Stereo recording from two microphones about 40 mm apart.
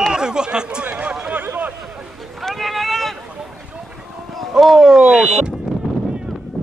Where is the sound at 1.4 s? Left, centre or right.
Right.